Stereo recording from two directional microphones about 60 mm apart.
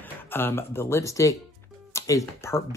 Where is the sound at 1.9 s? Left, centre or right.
Left.